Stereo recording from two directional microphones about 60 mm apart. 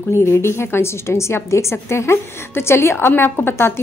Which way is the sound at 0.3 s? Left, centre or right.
Left.